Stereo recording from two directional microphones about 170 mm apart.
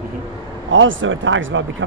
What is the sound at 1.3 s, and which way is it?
Speech, 90° right.